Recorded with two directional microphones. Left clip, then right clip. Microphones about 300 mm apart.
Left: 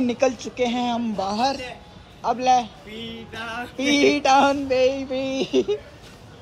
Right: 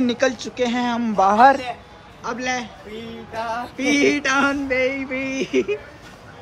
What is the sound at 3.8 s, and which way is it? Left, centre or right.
A man's voice, centre.